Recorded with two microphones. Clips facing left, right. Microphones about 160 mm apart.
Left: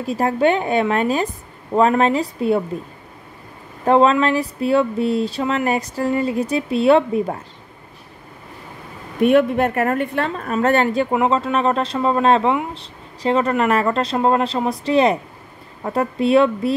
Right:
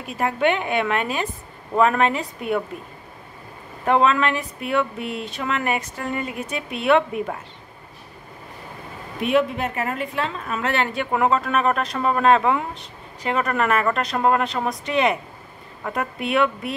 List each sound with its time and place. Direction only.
0.0 s speech: 35° left (ahead or behind)
3.8 s speech: 30° left (ahead or behind)
9.2 s a woman's voice: 55° left (ahead or behind)
11.1 s speech: 20° left (ahead or behind)